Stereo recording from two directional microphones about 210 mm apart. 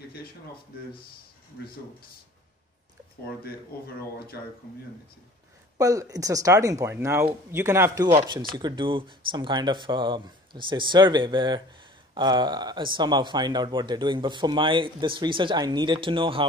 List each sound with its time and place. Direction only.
3.4 s speech: 45° left (ahead or behind)
5.8 s speech: 15° right (ahead or behind)